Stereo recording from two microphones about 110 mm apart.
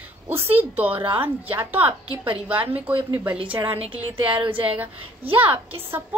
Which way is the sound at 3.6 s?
60° right (ahead or behind).